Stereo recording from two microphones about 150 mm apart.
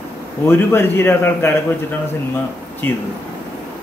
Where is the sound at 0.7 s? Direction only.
15° left (ahead or behind).